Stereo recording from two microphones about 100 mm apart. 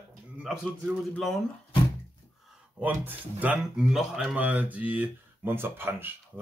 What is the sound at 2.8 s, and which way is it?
Speech, 15° right (ahead or behind).